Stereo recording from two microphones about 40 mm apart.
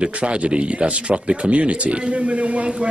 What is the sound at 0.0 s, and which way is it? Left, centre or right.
A man's voice, right.